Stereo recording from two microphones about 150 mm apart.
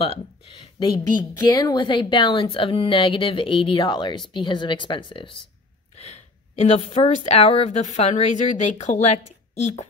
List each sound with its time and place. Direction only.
0.7 s speech: 30° left (ahead or behind)
5.9 s a sound: 45° left (ahead or behind)
7.1 s a woman's voice: 45° left (ahead or behind)